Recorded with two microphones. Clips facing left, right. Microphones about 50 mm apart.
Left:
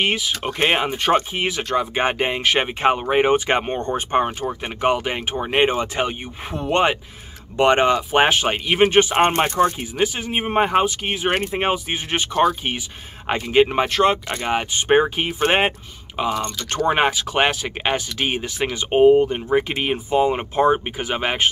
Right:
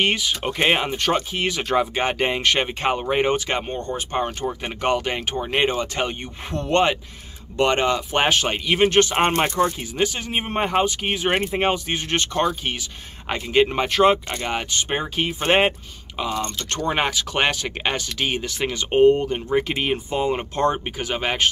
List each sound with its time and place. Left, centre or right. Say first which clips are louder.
0.0 s speech: even; centre
2.2 s speech: left 1 dB; centre
3.4 s speech: left 4 dB; left
4.6 s speech: left 2 dB; centre
5.9 s speech: left 2 dB; centre
13.8 s speech: right 1 dB; centre
14.3 s speech: left 3 dB; centre
14.8 s speech: left 7 dB; left; by 15.7 s centre
16.2 s speech: left 3 dB; centre